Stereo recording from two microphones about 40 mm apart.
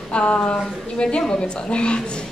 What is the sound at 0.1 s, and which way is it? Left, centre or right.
A woman's voice, left.